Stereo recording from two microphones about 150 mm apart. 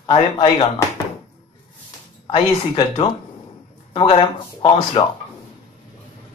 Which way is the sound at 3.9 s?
35° left (ahead or behind).